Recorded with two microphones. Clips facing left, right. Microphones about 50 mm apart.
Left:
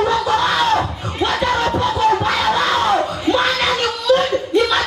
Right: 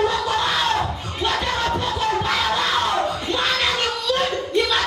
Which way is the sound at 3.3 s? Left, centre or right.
Left.